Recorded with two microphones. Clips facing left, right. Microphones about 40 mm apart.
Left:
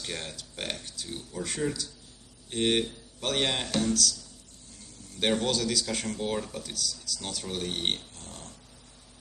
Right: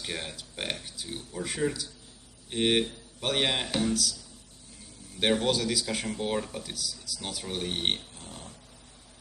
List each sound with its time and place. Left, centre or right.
0.0 s speech: centre